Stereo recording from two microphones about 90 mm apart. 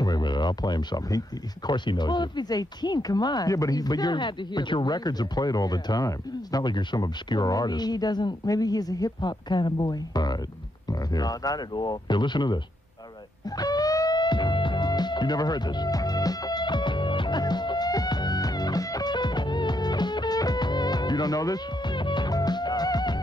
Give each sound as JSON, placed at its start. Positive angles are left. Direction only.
{"t": 0.0, "sound": "a sound", "side_deg": 50}
{"t": 1.7, "sound": "speech", "side_deg": 55}
{"t": 13.6, "sound": "music", "side_deg": 45}
{"t": 21.9, "sound": "music", "side_deg": 60}